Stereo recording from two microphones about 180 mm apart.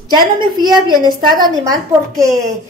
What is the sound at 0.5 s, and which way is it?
A woman's voice, 25° right (ahead or behind).